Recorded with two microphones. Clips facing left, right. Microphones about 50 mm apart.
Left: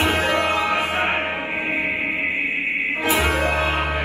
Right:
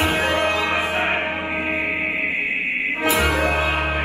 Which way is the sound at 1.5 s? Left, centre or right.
Right.